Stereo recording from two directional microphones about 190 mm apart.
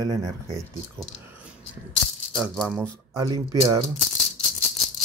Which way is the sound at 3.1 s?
20° right (ahead or behind).